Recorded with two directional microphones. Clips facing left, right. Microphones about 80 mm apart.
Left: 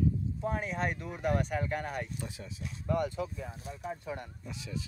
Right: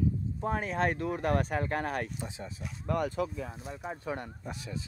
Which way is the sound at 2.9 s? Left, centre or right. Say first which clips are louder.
Right 1 dB; right.